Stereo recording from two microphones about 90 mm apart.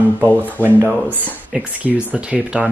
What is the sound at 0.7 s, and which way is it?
Speech, 20° right (ahead or behind).